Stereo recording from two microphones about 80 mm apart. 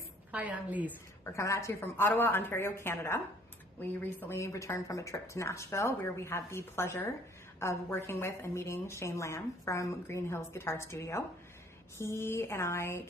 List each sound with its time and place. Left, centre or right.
0.3 s a woman's voice: centre
1.2 s a woman's voice: left
1.8 s a woman's voice: left
3.8 s a woman's voice: left
4.4 s a woman's voice: left